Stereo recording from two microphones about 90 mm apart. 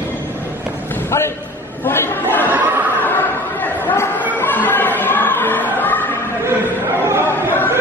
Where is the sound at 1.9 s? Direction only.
25° left (ahead or behind).